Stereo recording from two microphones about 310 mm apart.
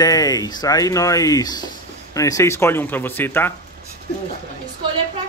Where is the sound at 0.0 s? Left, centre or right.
Centre.